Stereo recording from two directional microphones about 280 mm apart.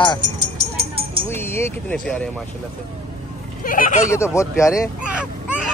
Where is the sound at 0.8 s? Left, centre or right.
Centre.